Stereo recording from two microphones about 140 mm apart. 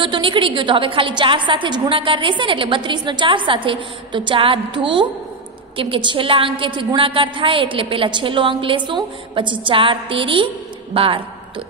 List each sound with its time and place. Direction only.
0.0 s a woman's voice: 35° right (ahead or behind)